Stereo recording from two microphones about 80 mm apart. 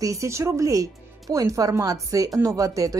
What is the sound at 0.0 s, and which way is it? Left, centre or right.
Speech, right.